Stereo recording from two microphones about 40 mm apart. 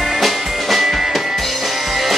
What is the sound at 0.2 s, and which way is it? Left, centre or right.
Music, centre.